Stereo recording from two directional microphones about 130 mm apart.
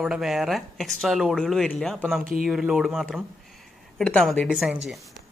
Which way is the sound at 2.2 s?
90° right.